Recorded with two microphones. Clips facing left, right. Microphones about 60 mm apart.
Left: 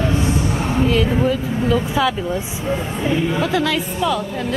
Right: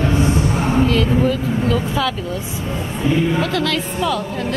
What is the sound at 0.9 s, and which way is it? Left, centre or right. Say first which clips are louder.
A woman's voice: right 1 dB; centre.